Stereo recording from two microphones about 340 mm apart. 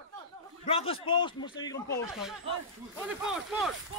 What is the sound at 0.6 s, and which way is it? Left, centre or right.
A man's voice, centre.